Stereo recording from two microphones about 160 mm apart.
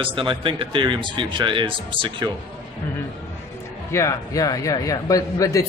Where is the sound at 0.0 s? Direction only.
30° right (ahead or behind).